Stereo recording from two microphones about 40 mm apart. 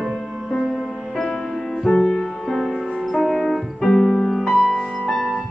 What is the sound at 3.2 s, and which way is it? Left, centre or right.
Piano, centre.